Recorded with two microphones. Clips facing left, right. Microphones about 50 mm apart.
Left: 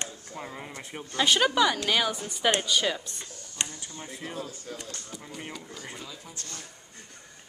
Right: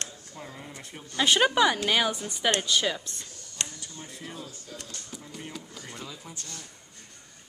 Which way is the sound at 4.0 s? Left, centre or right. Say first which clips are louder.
Left 3 dB; left.